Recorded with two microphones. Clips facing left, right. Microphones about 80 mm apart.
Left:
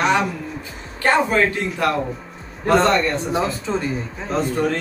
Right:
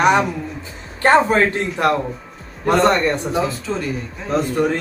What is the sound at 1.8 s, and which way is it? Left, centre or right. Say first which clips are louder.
Speech: right 3 dB; right.